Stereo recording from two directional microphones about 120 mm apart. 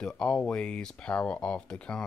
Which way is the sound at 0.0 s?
5° left (ahead or behind).